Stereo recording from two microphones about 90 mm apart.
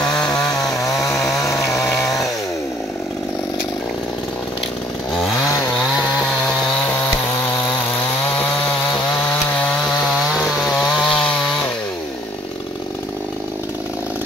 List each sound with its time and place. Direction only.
0.0 s chainsaw: 50° left (ahead or behind); by 2.1 s 30° left (ahead or behind)
9.6 s chainsaw: 10° left (ahead or behind)
10.0 s chainsaw: 5° right (ahead or behind)